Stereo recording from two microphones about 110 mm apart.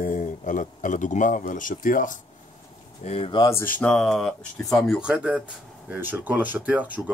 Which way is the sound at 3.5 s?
20° left (ahead or behind).